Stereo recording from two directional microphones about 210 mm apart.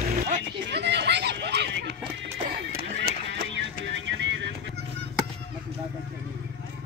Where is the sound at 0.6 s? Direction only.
55° right (ahead or behind).